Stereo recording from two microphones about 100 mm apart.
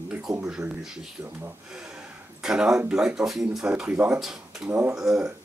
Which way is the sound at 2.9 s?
10° right (ahead or behind).